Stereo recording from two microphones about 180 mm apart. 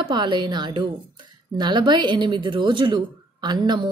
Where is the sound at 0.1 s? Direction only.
25° right (ahead or behind).